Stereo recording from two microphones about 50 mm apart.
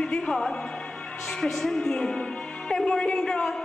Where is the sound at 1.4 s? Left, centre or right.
Centre.